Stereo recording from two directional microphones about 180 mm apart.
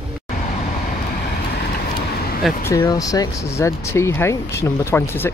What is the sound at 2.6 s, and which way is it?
Speech, 15° left (ahead or behind).